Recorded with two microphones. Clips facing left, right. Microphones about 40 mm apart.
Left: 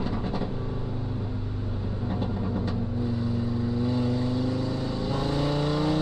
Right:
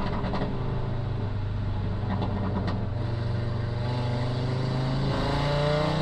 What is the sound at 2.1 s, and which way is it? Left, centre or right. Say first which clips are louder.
Vehicle: even; right.